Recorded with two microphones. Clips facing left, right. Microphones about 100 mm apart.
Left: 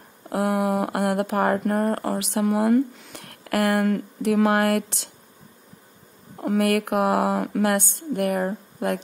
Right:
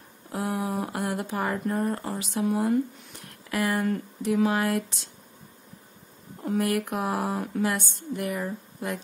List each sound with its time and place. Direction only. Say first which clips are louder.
0.3 s speech: left 7 dB; 65° left (ahead or behind)
6.4 s speech: left 5 dB; 65° left (ahead or behind)